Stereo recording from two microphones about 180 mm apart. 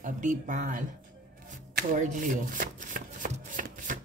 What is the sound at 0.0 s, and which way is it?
Speech, 45° right (ahead or behind).